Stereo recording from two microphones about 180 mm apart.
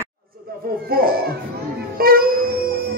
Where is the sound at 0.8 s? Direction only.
55° right (ahead or behind).